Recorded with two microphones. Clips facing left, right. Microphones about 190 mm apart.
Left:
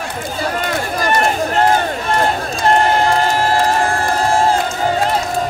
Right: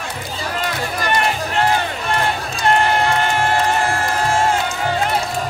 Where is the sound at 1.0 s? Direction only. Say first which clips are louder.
Left 4 dB; 40° left (ahead or behind).